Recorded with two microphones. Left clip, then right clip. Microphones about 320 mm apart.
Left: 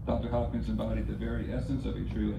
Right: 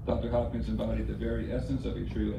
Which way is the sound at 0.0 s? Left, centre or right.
Centre.